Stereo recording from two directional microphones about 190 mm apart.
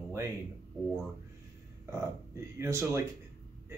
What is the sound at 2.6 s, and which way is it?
Speech, 15° right (ahead or behind).